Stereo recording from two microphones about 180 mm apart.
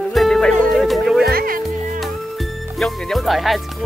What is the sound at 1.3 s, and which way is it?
Music, 55° right (ahead or behind).